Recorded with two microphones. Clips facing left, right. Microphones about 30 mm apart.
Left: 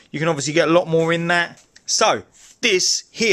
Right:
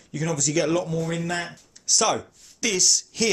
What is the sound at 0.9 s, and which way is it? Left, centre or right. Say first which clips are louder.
Speech: left 10 dB; left.